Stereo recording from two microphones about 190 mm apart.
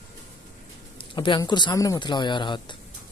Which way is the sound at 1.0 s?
25° left (ahead or behind).